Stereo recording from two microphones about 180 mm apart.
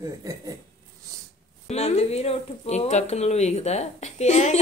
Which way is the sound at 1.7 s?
35° left (ahead or behind).